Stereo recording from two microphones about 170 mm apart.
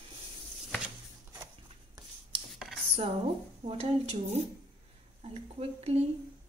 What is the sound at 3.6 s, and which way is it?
Speech, 35° right (ahead or behind).